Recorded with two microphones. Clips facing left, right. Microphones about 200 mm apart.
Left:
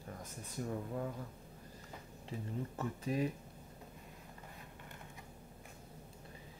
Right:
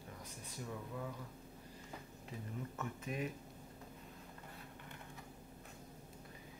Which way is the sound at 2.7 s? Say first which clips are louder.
Left 7 dB; 30° left (ahead or behind).